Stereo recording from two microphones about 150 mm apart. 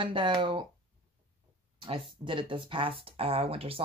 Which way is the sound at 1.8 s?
35° right (ahead or behind).